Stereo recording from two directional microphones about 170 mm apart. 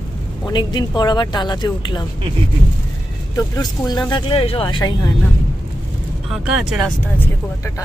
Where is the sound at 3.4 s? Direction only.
25° left (ahead or behind).